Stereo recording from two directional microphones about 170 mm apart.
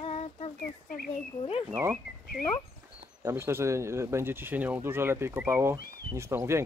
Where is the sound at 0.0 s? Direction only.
40° left (ahead or behind).